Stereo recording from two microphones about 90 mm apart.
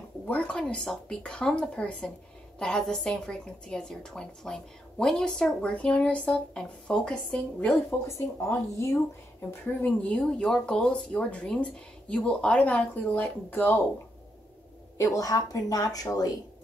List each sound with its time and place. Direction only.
0.3 s a woman's voice: 10° left (ahead or behind)
8.4 s speech: 30° left (ahead or behind)
9.8 s a woman's voice: 15° left (ahead or behind)
15.0 s a woman's voice: 40° left (ahead or behind)